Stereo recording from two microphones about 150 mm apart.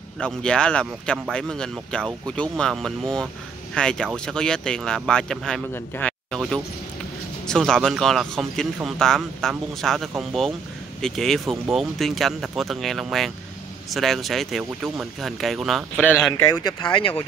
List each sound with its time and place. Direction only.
0.2 s a man's voice: 5° left (ahead or behind)
16.5 s speech: 30° left (ahead or behind)